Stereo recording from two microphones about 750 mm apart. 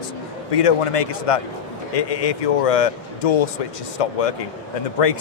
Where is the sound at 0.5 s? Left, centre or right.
Left.